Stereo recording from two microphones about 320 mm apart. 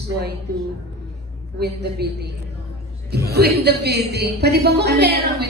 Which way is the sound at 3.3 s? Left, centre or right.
Right.